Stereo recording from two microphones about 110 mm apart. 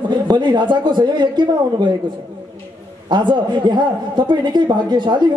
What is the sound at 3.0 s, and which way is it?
A man's voice, 45° right (ahead or behind).